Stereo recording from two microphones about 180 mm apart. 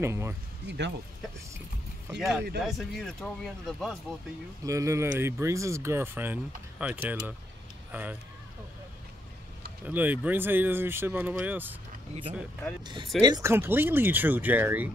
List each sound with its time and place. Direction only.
0.0 s speech: 15° right (ahead or behind)
0.7 s speech: 75° right (ahead or behind)
2.1 s speech: centre (ahead or behind)
4.6 s speech: 15° right (ahead or behind)
9.8 s speech: 10° right (ahead or behind)
12.8 s speech: 25° right (ahead or behind); by 14.9 s 10° right (ahead or behind)